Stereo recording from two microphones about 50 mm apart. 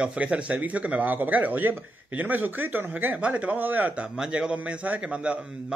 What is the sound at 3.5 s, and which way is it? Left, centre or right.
Speech, right.